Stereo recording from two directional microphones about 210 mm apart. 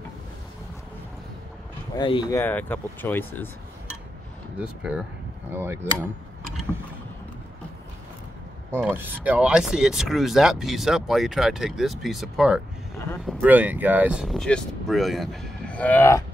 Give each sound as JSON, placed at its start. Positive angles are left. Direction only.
{"t": 2.0, "sound": "speech", "side_deg": 20}
{"t": 2.4, "sound": "speech", "side_deg": 10}
{"t": 5.5, "sound": "speech", "side_deg": -10}
{"t": 8.7, "sound": "speech", "side_deg": -10}